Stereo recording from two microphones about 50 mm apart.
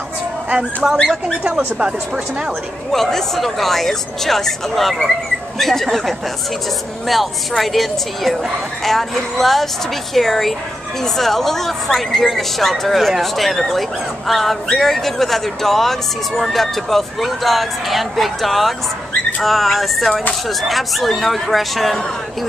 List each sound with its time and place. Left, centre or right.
0.8 s speech: centre
2.9 s a woman's voice: centre